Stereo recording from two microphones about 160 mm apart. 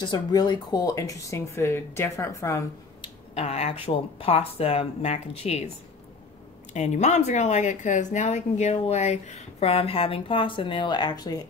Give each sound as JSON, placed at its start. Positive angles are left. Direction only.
{"t": 0.0, "sound": "speech", "side_deg": 25}
{"t": 3.0, "sound": "a sound", "side_deg": 40}
{"t": 3.8, "sound": "speech", "side_deg": 35}
{"t": 6.7, "sound": "a woman's voice", "side_deg": 50}